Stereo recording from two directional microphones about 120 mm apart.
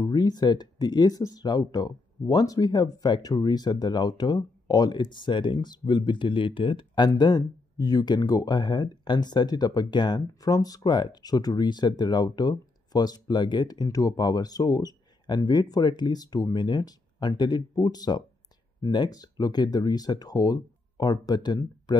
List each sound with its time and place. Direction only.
0.0 s speech: 35° left (ahead or behind)